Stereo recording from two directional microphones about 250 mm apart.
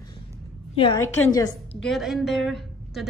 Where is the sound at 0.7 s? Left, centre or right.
Left.